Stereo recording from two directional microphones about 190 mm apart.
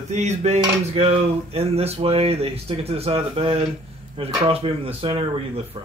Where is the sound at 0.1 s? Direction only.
35° right (ahead or behind).